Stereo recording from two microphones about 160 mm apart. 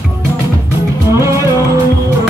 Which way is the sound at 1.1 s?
20° right (ahead or behind).